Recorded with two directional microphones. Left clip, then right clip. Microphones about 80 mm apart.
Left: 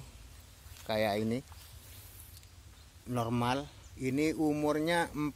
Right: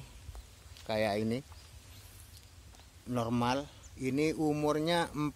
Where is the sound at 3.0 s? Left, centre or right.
Centre.